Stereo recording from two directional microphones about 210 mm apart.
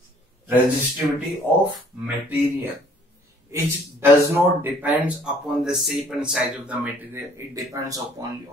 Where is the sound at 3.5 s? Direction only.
10° right (ahead or behind).